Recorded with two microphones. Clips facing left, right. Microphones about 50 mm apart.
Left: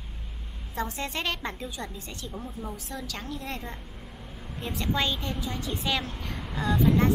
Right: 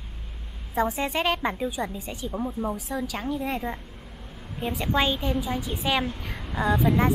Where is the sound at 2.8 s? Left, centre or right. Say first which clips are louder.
Right 7 dB; centre.